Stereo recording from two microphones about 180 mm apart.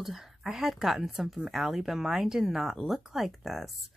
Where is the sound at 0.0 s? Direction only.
Centre (ahead or behind).